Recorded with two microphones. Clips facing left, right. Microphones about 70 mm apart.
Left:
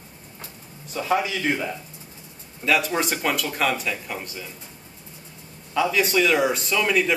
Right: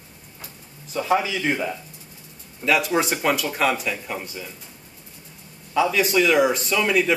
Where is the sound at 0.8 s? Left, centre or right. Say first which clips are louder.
Right 2 dB; centre.